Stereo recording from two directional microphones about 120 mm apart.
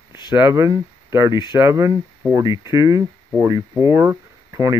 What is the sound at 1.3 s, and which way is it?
Speech, 40° left (ahead or behind).